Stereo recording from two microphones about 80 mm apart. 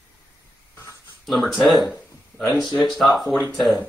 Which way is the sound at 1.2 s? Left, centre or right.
Centre.